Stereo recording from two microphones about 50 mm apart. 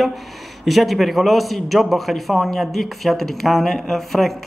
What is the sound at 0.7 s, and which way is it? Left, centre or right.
A man's voice, centre.